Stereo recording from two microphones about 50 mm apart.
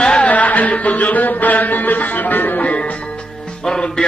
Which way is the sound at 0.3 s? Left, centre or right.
Left.